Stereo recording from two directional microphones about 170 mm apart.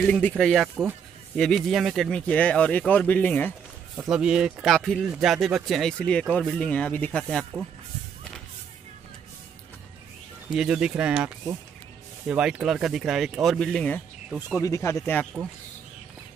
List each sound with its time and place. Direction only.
0.0 s speech: 5° left (ahead or behind)
3.9 s speech: 5° right (ahead or behind)
10.5 s speech: 5° right (ahead or behind)
14.6 s speech: 15° left (ahead or behind)